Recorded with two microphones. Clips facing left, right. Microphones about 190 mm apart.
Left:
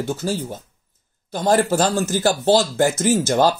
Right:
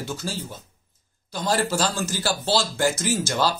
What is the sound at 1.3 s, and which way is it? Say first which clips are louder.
Speech: left 6 dB; 50° left (ahead or behind).